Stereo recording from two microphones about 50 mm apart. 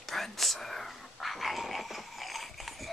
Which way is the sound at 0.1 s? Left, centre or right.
Centre.